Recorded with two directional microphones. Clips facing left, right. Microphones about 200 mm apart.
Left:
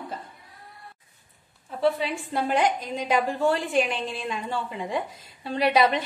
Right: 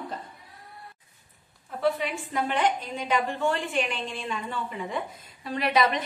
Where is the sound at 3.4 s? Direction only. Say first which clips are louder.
Left 4 dB; 35° left (ahead or behind).